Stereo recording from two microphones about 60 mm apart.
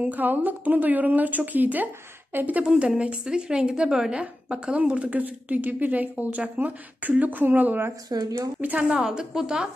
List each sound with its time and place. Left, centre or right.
0.0 s a woman's voice: right
2.6 s a woman's voice: centre; by 7.9 s right
8.1 s speech: right
8.5 s a woman's voice: right
9.0 s speech: centre